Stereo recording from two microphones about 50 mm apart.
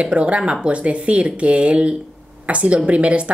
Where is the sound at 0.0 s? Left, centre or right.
Right.